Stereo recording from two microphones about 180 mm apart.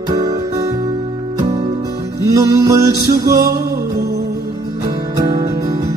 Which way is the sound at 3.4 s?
55° right (ahead or behind).